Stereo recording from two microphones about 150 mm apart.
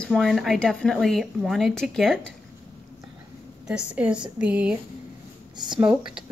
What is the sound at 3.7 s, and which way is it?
A woman's voice, 5° right (ahead or behind).